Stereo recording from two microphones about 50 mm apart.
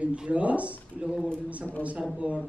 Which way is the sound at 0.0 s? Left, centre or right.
Right.